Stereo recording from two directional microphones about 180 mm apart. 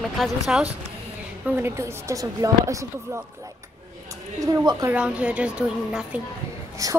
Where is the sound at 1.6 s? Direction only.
15° right (ahead or behind).